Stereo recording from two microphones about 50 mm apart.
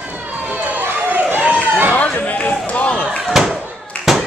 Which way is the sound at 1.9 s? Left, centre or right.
Left.